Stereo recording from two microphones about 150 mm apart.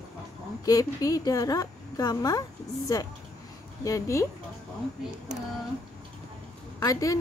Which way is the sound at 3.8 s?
20° left (ahead or behind).